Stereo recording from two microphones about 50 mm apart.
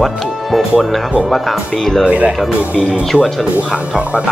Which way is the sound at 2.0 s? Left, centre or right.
Right.